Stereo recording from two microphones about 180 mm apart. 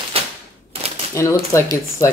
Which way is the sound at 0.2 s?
30° right (ahead or behind).